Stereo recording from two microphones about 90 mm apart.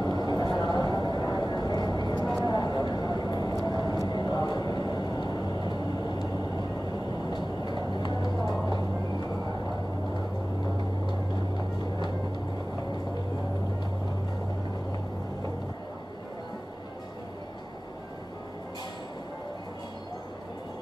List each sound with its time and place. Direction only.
0.0 s a sound: 50° left (ahead or behind)
0.8 s vehicle: 50° left (ahead or behind)
7.2 s vehicle: 55° left (ahead or behind)